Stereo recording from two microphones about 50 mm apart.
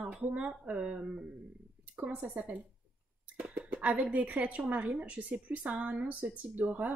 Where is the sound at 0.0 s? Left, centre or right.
Right.